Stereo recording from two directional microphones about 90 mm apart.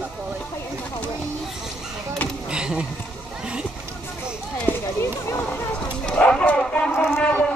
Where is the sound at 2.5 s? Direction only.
10° right (ahead or behind).